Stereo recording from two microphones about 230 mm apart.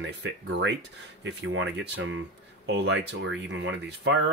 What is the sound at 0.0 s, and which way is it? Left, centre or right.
Speech, right.